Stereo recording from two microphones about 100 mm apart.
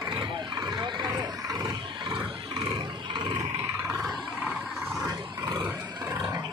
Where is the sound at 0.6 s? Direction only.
45° right (ahead or behind).